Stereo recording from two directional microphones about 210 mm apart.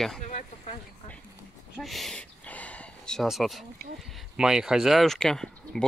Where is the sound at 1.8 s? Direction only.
Centre (ahead or behind).